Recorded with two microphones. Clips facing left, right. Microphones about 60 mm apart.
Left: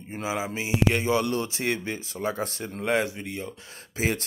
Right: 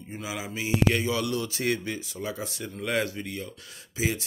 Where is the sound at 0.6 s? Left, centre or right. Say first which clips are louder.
Right 2 dB; left.